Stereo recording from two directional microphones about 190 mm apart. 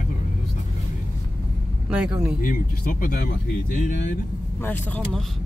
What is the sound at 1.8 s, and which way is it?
Speech, 5° right (ahead or behind).